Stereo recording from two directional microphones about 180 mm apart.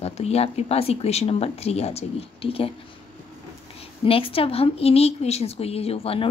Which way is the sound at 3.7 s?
30° left (ahead or behind).